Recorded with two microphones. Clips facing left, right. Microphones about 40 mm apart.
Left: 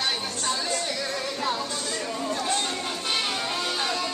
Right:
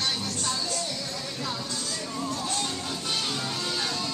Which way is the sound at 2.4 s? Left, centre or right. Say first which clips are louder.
Left 4 dB; left.